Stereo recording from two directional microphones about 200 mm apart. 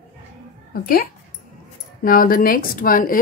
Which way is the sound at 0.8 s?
45° left (ahead or behind).